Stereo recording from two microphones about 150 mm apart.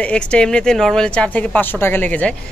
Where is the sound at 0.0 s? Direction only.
5° left (ahead or behind).